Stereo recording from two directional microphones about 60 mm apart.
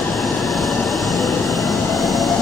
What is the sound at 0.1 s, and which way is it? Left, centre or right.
Train, centre.